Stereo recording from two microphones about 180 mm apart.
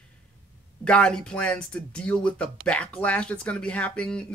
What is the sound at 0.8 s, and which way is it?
Speech, 5° left (ahead or behind).